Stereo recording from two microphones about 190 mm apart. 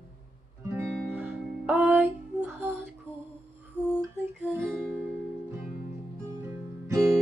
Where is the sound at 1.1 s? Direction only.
10° right (ahead or behind).